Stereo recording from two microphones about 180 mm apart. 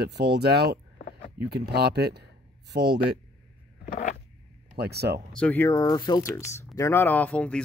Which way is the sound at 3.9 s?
40° left (ahead or behind).